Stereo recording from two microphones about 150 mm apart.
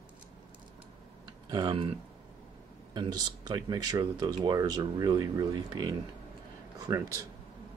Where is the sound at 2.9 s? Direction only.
30° right (ahead or behind).